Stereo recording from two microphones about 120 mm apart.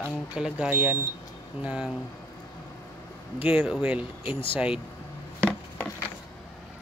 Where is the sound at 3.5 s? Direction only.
5° right (ahead or behind).